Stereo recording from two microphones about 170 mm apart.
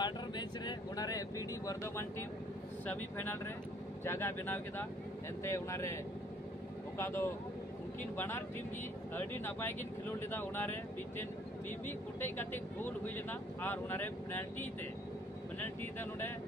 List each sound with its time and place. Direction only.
0.0 s vehicle: 25° left (ahead or behind)
2.9 s speech: 10° left (ahead or behind)
7.0 s speech: 15° left (ahead or behind)